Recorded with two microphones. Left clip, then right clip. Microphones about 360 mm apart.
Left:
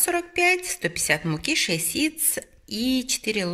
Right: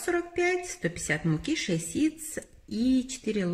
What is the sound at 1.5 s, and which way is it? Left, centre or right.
Speech, left.